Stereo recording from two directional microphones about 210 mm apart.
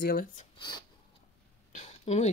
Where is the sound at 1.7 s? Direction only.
35° left (ahead or behind).